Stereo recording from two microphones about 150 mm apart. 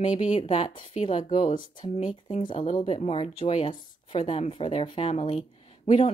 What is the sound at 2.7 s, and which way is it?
Speech, 40° left (ahead or behind).